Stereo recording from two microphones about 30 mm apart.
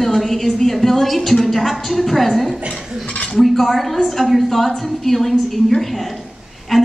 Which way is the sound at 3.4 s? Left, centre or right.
Centre.